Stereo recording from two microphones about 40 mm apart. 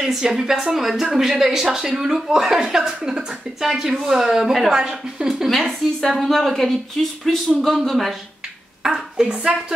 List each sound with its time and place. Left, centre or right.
0.0 s a woman's voice: centre
5.3 s a woman's voice: centre
8.9 s speech: right